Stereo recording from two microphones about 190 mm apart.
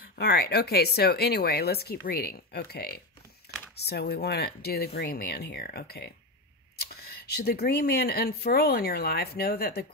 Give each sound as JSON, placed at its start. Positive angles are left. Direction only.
{"t": 0.0, "sound": "speech", "side_deg": 55}